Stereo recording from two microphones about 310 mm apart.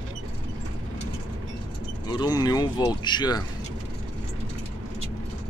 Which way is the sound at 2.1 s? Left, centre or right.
Centre.